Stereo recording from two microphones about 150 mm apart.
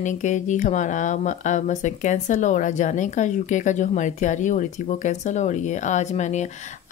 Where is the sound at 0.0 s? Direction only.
55° left (ahead or behind).